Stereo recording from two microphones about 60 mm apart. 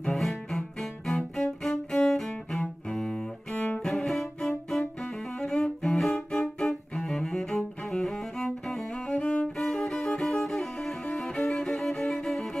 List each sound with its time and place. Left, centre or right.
0.0 s cello: centre
3.5 s cello: left
3.8 s bowed string instrument: centre
5.4 s music: centre
7.0 s cello: centre
9.1 s music: centre
9.6 s music: centre